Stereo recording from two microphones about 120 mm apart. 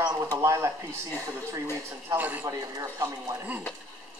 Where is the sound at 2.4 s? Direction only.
25° right (ahead or behind).